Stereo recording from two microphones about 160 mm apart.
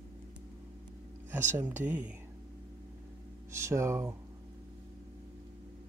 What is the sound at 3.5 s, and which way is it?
Speech, 15° right (ahead or behind).